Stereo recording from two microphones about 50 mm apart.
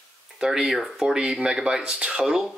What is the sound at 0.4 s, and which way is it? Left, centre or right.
Speech, centre.